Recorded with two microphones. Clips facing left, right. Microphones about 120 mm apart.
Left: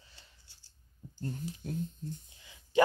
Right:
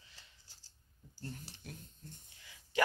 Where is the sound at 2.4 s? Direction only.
20° left (ahead or behind).